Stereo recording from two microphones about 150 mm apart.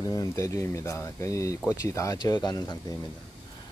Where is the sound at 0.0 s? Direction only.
25° left (ahead or behind).